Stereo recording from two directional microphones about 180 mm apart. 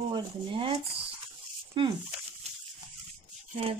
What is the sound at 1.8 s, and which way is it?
Speech, 25° right (ahead or behind).